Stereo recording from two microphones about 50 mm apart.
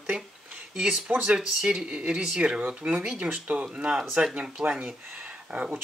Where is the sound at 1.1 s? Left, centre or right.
Right.